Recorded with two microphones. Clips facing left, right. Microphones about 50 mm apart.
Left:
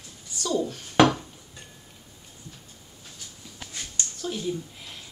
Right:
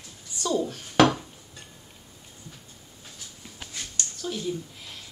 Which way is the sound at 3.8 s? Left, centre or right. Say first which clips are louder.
Left 1 dB; centre.